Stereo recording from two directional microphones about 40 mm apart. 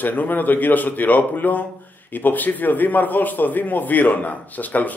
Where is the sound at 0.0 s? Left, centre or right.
Left.